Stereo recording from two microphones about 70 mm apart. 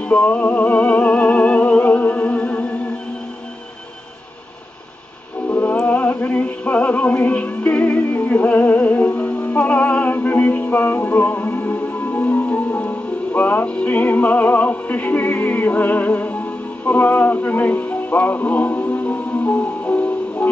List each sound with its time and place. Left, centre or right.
0.0 s music: centre
5.5 s music: left